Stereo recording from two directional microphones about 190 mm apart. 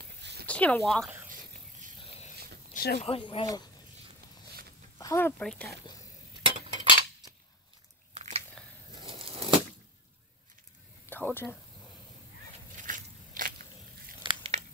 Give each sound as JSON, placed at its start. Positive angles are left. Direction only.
{"t": 0.0, "sound": "a sound", "side_deg": -60}
{"t": 0.5, "sound": "speech", "side_deg": 5}
{"t": 1.0, "sound": "snake", "side_deg": -10}
{"t": 2.7, "sound": "a sound", "side_deg": 55}
{"t": 3.0, "sound": "speech", "side_deg": 30}
{"t": 4.9, "sound": "speech", "side_deg": 15}
{"t": 6.4, "sound": "cutlery", "side_deg": -25}
{"t": 8.1, "sound": "biting", "side_deg": -35}
{"t": 8.6, "sound": "a sound", "side_deg": 5}
{"t": 9.0, "sound": "a sound", "side_deg": -30}
{"t": 11.1, "sound": "speech", "side_deg": 10}
{"t": 12.7, "sound": "biting", "side_deg": -45}
{"t": 14.2, "sound": "crumpling", "side_deg": -30}